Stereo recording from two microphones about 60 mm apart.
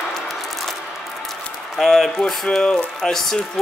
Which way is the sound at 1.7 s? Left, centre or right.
Centre.